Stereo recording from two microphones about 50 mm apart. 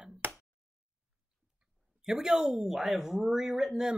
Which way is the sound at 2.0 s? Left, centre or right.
Centre.